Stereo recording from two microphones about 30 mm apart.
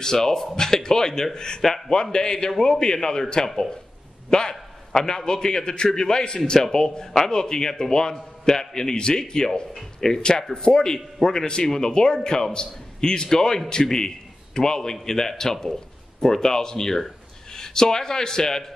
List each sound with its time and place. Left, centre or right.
0.0 s a man's voice: centre
1.6 s a man's voice: centre
2.1 s a man's voice: left